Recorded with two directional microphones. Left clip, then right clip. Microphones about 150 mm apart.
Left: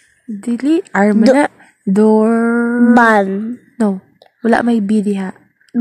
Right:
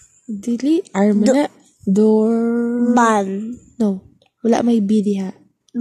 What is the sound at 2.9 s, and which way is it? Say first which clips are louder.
Speech: left 5 dB; 25° left (ahead or behind).